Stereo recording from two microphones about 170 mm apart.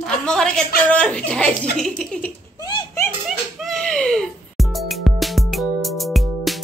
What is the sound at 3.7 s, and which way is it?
Music, 5° left (ahead or behind).